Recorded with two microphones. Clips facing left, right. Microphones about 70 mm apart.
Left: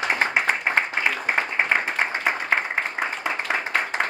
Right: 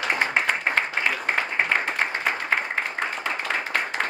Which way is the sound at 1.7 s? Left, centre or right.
Centre.